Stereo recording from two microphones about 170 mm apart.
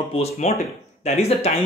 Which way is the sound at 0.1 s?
35° left (ahead or behind).